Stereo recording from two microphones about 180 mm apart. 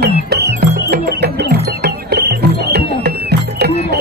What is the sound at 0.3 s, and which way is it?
Music, 65° right (ahead or behind).